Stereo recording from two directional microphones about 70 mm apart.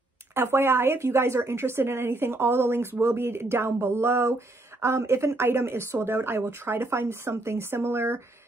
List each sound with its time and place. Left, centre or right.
0.3 s a woman's voice: right